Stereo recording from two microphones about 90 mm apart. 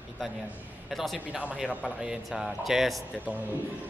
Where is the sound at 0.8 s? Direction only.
Centre (ahead or behind).